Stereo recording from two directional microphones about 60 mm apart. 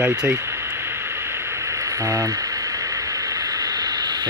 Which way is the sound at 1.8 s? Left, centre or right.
Right.